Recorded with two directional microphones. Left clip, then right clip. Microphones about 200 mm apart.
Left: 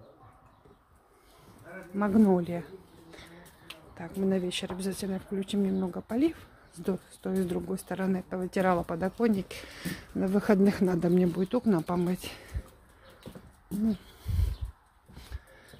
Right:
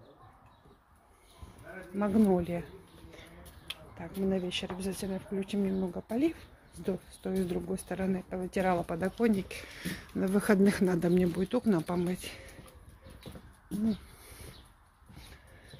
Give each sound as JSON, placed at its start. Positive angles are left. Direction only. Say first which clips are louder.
{"t": 2.0, "sound": "speech", "louder": "left 3 dB", "side_deg": 10}
{"t": 3.9, "sound": "speech", "louder": "left 3 dB", "side_deg": 10}
{"t": 12.2, "sound": "speech", "louder": "left 2 dB", "side_deg": 20}
{"t": 14.2, "sound": "a sound", "louder": "left 6 dB", "side_deg": 15}